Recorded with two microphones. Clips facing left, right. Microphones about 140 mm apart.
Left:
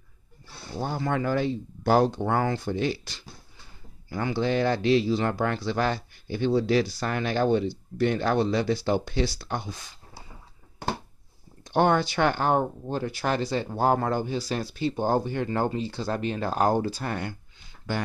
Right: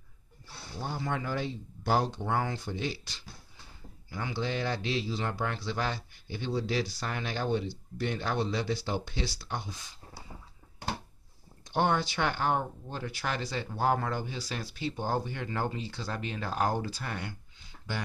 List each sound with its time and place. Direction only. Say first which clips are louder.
0.7 s a man's voice: left 7 dB; 65° left (ahead or behind)
11.6 s speech: left 6 dB; 65° left (ahead or behind)